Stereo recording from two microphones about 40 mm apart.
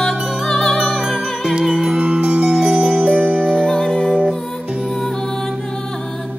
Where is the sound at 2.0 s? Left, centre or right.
Right.